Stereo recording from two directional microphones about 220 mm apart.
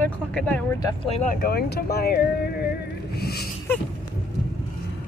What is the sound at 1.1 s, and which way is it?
Speech, 35° left (ahead or behind).